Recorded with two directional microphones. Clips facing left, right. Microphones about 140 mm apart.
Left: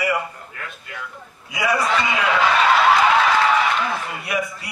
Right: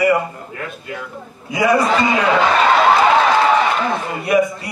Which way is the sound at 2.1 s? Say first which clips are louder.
Right 2 dB; 30° right (ahead or behind).